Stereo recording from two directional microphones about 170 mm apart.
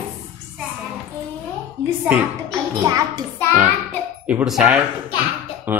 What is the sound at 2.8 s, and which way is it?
Speech, 20° right (ahead or behind).